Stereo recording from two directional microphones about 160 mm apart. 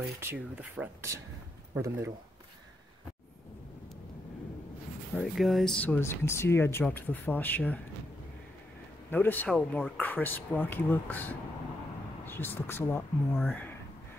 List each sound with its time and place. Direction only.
0.2 s speech: 10° right (ahead or behind)
5.1 s speech: centre (ahead or behind)
9.1 s speech: 10° left (ahead or behind)